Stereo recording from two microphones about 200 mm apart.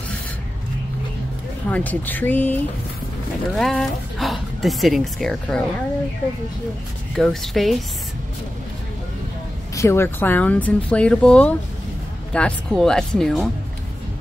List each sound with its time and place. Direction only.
1.7 s speech: 10° left (ahead or behind)
7.2 s speech: centre (ahead or behind)
9.8 s speech: 15° left (ahead or behind)